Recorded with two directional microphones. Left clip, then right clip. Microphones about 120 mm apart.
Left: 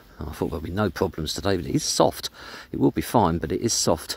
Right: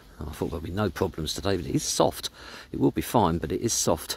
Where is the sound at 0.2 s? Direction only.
40° left (ahead or behind).